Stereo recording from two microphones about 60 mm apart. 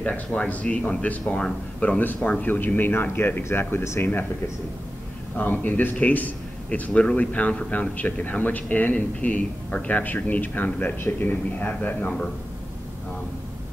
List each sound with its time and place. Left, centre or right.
0.0 s a man's voice: left
3.4 s speech: left
5.4 s a man's voice: left